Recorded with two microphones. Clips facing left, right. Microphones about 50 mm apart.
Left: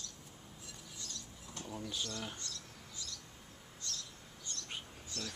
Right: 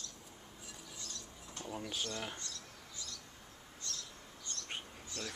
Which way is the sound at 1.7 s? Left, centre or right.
Right.